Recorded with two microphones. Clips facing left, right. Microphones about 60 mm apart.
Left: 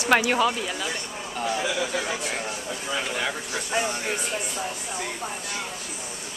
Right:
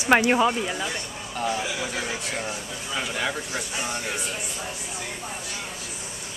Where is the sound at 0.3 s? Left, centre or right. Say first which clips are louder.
Right 2 dB; centre.